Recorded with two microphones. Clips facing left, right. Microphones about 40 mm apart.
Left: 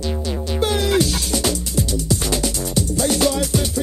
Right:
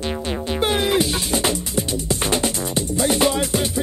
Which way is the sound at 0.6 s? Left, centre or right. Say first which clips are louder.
Left 1 dB; right.